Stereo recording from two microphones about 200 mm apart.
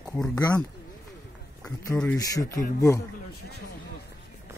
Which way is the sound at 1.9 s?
5° left (ahead or behind).